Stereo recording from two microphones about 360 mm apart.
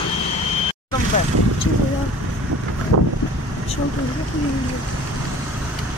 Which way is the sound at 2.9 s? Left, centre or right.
Right.